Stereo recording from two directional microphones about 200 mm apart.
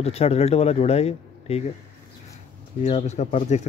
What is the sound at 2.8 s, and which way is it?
Speech, 35° left (ahead or behind).